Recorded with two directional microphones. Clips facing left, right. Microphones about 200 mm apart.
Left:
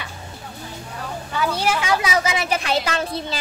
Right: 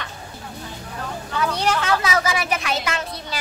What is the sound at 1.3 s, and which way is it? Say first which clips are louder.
A woman's voice: even; 5° left (ahead or behind).